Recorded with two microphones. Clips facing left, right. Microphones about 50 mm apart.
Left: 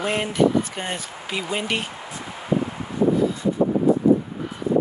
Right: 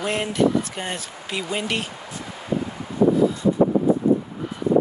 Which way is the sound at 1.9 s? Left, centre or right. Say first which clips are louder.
Left 1 dB; centre.